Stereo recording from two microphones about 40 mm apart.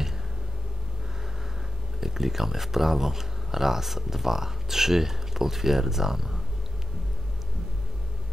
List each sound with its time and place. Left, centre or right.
2.0 s speech: centre